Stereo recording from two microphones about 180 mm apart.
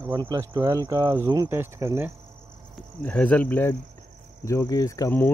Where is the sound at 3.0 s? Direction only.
5° left (ahead or behind).